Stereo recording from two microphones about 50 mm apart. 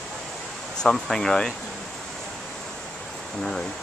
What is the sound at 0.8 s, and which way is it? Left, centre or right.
Speech, centre.